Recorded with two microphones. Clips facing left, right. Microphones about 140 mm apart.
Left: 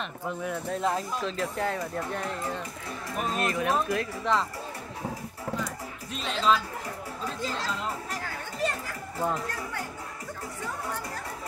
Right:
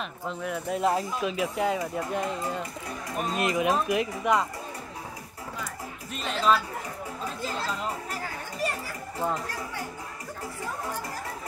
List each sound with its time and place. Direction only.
0.4 s speech: 10° right (ahead or behind)
6.1 s speech: 5° right (ahead or behind)
7.4 s chatter: 5° right (ahead or behind)